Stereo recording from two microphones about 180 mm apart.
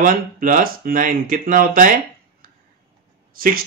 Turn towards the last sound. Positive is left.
turn(degrees=-50)  # may be behind; listen again after turning